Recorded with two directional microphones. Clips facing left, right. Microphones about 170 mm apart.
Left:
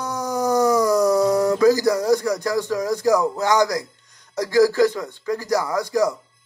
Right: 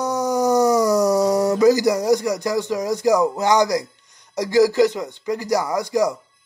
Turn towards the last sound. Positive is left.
turn(degrees=-15)  # may be behind; listen again after turning